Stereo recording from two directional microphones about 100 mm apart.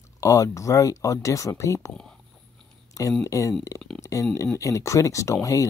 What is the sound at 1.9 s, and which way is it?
Speech, 10° left (ahead or behind).